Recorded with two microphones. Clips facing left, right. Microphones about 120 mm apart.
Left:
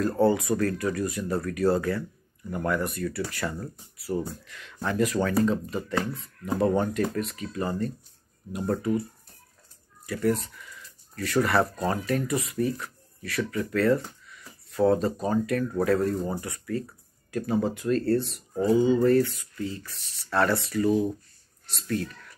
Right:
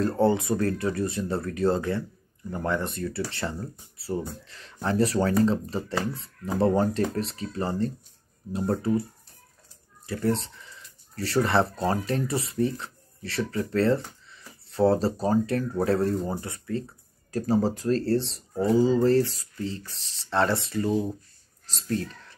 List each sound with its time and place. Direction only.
0.2 s speech: 25° right (ahead or behind)
10.0 s speech: 30° right (ahead or behind)